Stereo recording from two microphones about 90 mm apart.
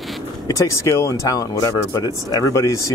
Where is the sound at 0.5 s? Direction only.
35° left (ahead or behind).